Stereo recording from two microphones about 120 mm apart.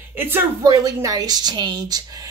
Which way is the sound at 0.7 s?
30° right (ahead or behind).